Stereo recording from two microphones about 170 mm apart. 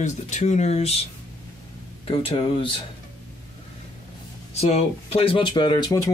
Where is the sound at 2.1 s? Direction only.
30° left (ahead or behind).